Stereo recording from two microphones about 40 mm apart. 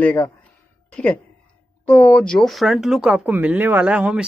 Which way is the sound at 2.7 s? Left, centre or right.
Centre.